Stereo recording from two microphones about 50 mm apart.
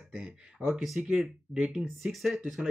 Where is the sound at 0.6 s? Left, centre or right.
Centre.